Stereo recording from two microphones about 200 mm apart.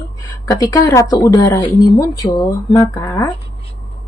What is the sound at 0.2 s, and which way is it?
A woman's voice, 15° left (ahead or behind).